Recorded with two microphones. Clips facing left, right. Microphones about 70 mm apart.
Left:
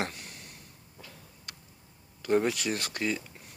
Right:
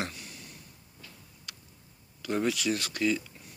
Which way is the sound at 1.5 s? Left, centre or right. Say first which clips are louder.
Even; left.